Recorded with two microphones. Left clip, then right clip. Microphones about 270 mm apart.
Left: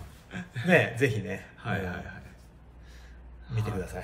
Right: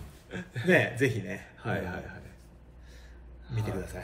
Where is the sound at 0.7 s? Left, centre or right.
Left.